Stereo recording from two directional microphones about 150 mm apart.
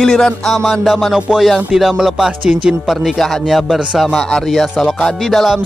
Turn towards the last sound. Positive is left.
turn(degrees=0)  # may be behind; listen again after turning